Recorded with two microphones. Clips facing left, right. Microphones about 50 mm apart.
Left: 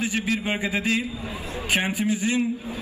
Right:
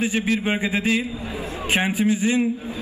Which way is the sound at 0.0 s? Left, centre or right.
Right.